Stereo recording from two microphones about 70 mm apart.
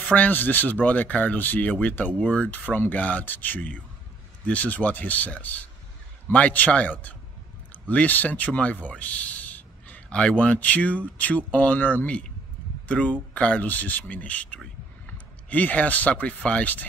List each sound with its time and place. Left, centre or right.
0.0 s speech: left